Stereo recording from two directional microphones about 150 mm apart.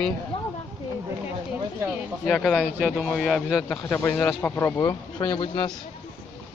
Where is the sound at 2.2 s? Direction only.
Centre (ahead or behind).